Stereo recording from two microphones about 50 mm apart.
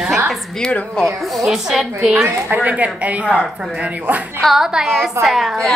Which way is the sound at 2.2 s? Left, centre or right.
Right.